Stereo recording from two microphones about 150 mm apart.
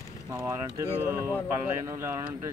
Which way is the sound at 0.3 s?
20° right (ahead or behind).